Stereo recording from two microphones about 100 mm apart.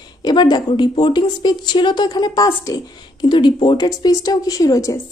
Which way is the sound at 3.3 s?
55° left (ahead or behind).